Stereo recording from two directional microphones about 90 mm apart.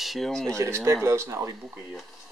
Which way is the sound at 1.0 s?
30° right (ahead or behind).